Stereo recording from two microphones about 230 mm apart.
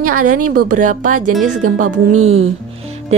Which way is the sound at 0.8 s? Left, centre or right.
Right.